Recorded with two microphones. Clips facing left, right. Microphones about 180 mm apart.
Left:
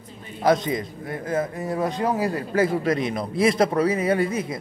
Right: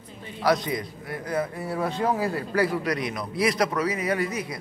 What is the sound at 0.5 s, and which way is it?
A man's voice, 25° left (ahead or behind).